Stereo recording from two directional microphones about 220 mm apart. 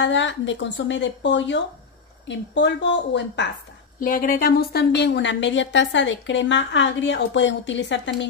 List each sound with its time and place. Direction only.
0.0 s a woman's voice: 55° left (ahead or behind)
4.0 s a woman's voice: 40° left (ahead or behind); by 8.3 s 55° left (ahead or behind)